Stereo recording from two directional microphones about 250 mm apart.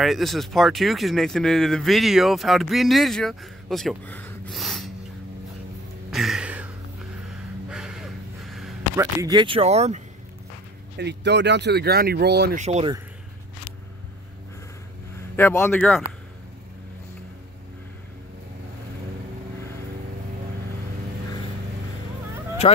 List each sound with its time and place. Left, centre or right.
0.0 s speech: centre
6.0 s music: centre
7.7 s a sound: centre
8.9 s speech: centre
11.0 s speech: right
12.6 s speech: right
15.3 s speech: centre